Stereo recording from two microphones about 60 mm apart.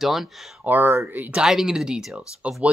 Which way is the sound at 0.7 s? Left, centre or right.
Right.